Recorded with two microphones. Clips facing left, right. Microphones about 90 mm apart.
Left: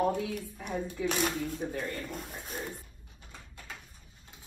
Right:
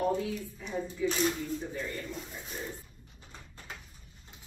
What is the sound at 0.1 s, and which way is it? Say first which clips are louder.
Speech: right 1 dB; 60° left (ahead or behind).